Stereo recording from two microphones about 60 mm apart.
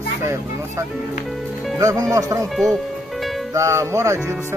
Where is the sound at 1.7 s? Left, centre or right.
Right.